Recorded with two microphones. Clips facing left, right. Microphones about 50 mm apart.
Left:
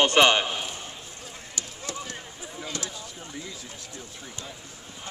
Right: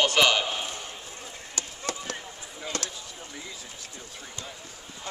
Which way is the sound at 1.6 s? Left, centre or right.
Right.